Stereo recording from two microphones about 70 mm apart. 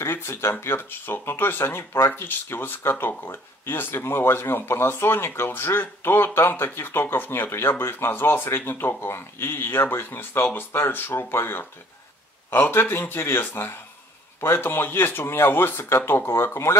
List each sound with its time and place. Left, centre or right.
0.0 s speech: left